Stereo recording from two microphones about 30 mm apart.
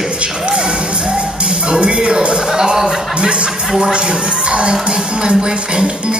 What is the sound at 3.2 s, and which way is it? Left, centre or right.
Speech, right.